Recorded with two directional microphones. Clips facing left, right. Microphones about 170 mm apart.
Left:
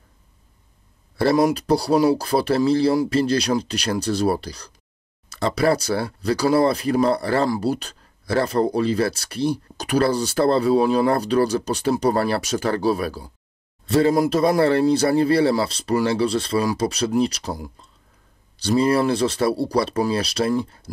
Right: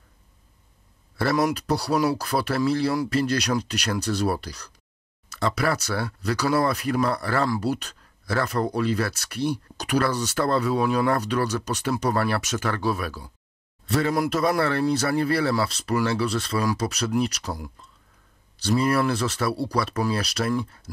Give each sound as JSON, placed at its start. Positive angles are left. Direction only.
{"t": 1.1, "sound": "speech", "side_deg": 30}